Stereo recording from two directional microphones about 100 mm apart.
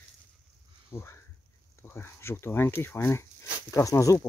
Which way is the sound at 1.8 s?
20° left (ahead or behind).